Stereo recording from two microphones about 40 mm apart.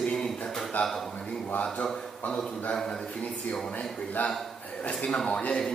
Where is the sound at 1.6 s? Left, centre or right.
Left.